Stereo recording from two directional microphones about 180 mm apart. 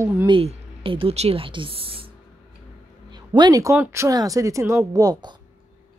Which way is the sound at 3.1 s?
25° right (ahead or behind).